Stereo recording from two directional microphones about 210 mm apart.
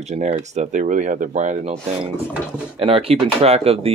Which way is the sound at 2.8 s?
25° right (ahead or behind).